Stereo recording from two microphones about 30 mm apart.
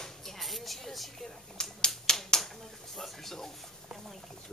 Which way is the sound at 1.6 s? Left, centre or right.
Left.